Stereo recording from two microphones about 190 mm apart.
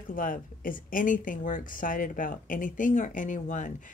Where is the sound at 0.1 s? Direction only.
45° left (ahead or behind).